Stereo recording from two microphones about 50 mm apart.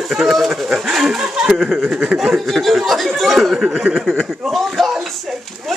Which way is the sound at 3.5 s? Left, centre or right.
Right.